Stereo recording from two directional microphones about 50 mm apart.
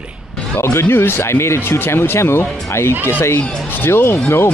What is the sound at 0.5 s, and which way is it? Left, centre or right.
Speech, left.